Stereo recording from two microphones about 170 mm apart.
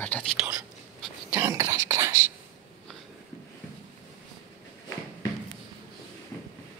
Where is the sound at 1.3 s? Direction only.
15° right (ahead or behind).